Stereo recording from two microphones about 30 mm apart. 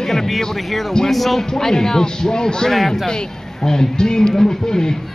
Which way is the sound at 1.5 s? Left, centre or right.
Centre.